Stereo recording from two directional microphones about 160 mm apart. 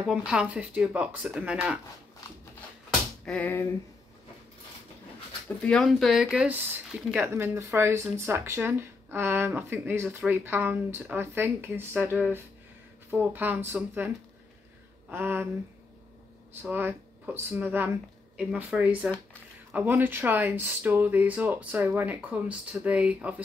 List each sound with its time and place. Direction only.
0.1 s speech: 5° right (ahead or behind)
3.3 s a sound: 10° left (ahead or behind)
5.6 s speech: 5° left (ahead or behind); by 15.4 s 15° right (ahead or behind)
16.6 s speech: 10° right (ahead or behind)